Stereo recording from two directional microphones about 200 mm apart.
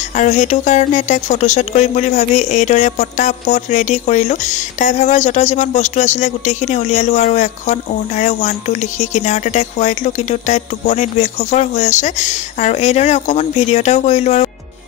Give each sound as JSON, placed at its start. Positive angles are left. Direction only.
{"t": 0.2, "sound": "speech", "side_deg": 35}